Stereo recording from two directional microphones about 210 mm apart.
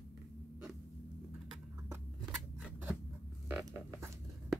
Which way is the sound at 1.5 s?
15° right (ahead or behind).